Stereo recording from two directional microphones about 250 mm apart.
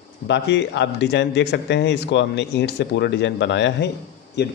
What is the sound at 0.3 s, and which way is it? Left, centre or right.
Speech, left.